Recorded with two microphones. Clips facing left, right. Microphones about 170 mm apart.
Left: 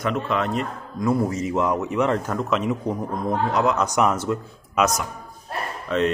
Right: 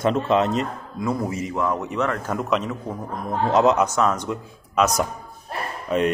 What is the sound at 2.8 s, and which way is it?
A man's voice, 20° left (ahead or behind).